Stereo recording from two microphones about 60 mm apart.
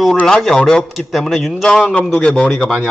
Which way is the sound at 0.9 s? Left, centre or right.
Centre.